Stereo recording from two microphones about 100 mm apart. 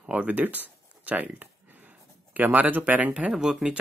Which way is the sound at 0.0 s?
15° right (ahead or behind).